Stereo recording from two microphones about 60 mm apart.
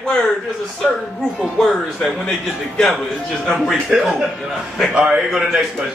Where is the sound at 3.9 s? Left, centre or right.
Centre.